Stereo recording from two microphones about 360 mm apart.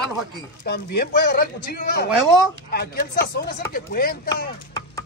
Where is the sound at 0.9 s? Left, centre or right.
Left.